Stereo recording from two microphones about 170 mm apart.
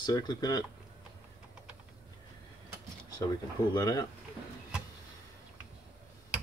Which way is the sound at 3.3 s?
20° left (ahead or behind).